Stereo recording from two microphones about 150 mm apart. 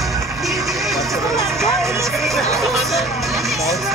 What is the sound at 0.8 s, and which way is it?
Speech, centre (ahead or behind).